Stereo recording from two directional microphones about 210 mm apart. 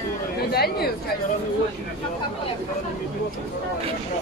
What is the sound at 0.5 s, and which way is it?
Speech, 50° left (ahead or behind).